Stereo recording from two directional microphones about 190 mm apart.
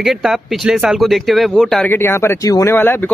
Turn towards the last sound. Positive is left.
turn(degrees=10)  # may be behind; listen again after turning